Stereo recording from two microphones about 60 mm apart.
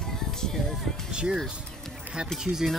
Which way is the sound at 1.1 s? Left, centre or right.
Centre.